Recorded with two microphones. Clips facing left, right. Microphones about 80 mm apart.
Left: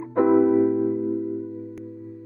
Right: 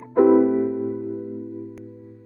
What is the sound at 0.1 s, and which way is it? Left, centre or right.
Music, centre.